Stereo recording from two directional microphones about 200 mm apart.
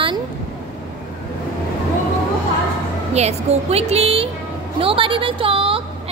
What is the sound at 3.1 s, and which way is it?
A woman's voice, 30° right (ahead or behind).